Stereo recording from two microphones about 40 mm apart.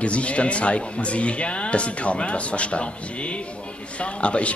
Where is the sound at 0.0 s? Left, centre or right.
Left.